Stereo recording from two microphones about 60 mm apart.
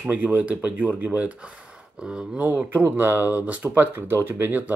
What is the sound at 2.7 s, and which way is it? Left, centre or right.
Speech, right.